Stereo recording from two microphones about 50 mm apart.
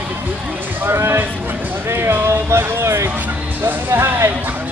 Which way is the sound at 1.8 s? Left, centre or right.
Right.